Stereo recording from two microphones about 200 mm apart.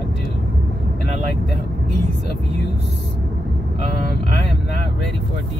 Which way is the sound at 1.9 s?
60° left (ahead or behind).